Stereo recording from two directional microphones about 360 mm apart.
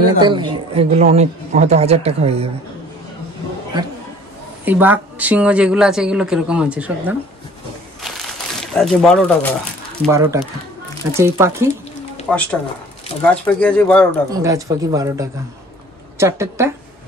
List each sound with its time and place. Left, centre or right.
0.2 s speech: centre
4.6 s speech: centre
8.0 s a sound: centre
10.0 s speech: centre
14.3 s speech: centre